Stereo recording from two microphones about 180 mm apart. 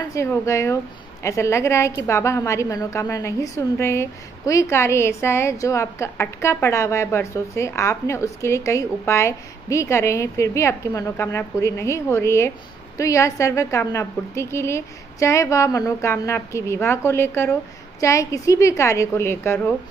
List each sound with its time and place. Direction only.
0.1 s a woman's voice: 15° left (ahead or behind)